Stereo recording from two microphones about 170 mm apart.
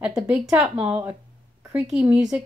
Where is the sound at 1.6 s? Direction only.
15° right (ahead or behind).